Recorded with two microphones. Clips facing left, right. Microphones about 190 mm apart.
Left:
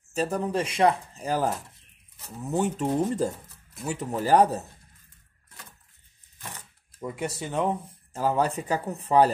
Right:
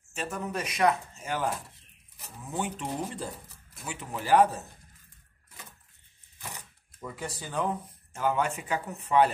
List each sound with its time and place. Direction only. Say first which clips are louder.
0.1 s speech: left 7 dB; 35° left (ahead or behind)
7.0 s speech: left 6 dB; 20° left (ahead or behind)